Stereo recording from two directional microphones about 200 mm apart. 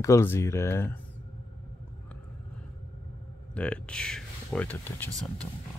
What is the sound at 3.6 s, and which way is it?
Speech, 5° left (ahead or behind).